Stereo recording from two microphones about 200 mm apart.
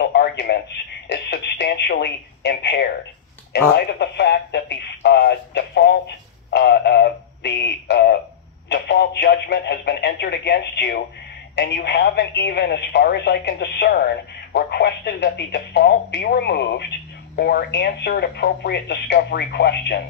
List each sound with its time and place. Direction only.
0.0 s radio: 55° left (ahead or behind)
1.0 s speech: 60° left (ahead or behind)